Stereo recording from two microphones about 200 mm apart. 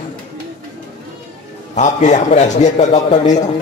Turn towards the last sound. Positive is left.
turn(degrees=35)  # may be behind; listen again after turning